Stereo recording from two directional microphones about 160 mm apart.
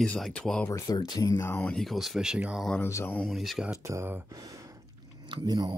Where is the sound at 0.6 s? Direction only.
20° left (ahead or behind).